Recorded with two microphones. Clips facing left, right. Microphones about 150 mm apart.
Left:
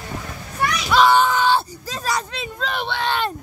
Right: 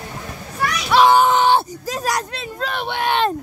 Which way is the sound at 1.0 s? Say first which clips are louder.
Right 3 dB; 15° right (ahead or behind).